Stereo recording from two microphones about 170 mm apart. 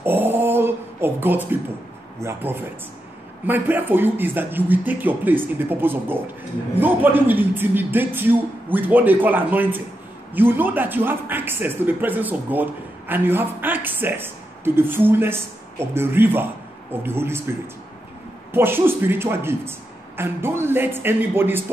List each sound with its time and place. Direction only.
0.0 s a sound: 10° right (ahead or behind)
2.1 s speech: 15° right (ahead or behind)
18.5 s speech: 15° right (ahead or behind)